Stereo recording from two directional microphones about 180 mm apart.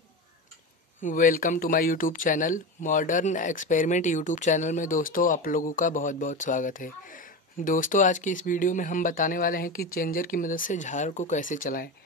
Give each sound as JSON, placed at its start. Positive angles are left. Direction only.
{"t": 1.0, "sound": "speech", "side_deg": 50}